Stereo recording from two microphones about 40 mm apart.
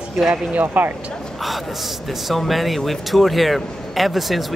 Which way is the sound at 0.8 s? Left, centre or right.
Right.